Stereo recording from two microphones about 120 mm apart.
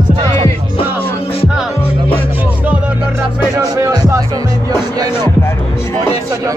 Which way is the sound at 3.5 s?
30° right (ahead or behind).